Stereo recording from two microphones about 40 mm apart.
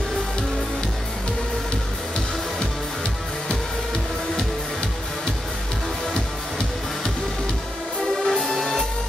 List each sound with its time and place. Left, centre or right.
8.3 s music: centre